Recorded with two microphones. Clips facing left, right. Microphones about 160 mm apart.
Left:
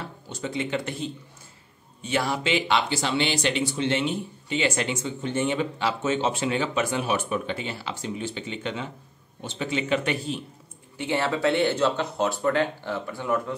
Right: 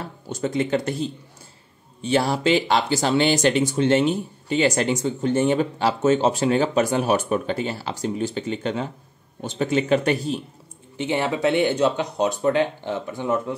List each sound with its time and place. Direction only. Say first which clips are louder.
0.3 s a man's voice: right 6 dB; 45° right (ahead or behind)
11.0 s speech: right 3 dB; 15° right (ahead or behind)